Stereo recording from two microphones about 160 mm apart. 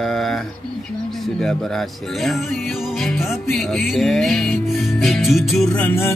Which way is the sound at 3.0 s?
Centre (ahead or behind).